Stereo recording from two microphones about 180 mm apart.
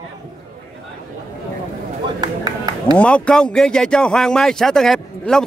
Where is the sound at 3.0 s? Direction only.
5° left (ahead or behind).